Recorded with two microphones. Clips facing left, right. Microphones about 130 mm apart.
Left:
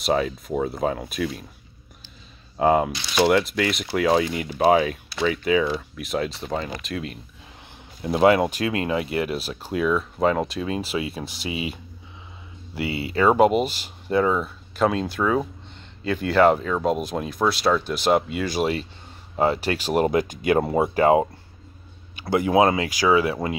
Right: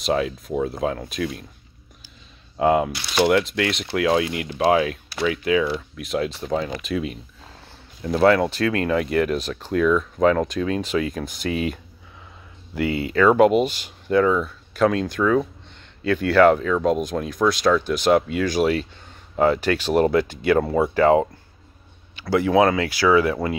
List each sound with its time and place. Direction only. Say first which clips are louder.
0.0 s speech: even; centre (ahead or behind)
2.5 s speech: even; centre (ahead or behind)
8.0 s speech: even; 15° left (ahead or behind)
12.7 s speech: right 4 dB; 50° right (ahead or behind)
13.1 s speech: right 2 dB; 10° left (ahead or behind)